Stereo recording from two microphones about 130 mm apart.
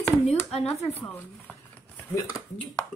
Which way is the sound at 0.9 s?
15° left (ahead or behind).